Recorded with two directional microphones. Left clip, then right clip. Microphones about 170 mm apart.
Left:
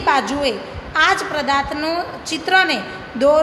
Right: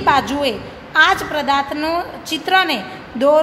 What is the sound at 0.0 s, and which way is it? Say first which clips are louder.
A woman's voice: right 2 dB; 15° right (ahead or behind).